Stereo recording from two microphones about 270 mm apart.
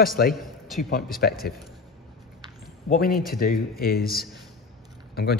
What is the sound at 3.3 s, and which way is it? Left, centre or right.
Speech, left.